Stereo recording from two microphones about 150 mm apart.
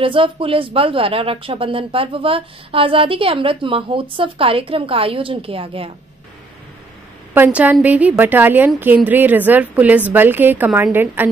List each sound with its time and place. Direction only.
0.0 s speech: 35° right (ahead or behind)
7.3 s a woman's voice: 10° right (ahead or behind)